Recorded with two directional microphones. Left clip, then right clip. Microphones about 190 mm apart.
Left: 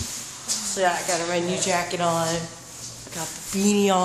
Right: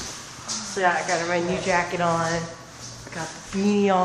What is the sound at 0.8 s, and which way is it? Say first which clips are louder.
Speech: right 1 dB; 20° left (ahead or behind).